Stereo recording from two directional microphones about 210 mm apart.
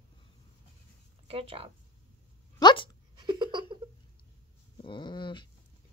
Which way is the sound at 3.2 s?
20° right (ahead or behind).